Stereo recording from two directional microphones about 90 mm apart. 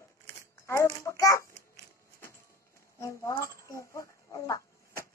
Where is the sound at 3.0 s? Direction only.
35° left (ahead or behind).